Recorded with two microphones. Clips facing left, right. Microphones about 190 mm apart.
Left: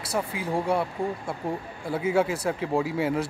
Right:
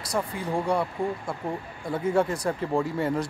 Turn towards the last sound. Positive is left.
turn(degrees=5)  # may be behind; listen again after turning